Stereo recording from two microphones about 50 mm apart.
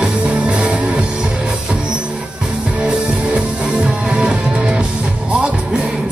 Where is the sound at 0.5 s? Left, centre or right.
Right.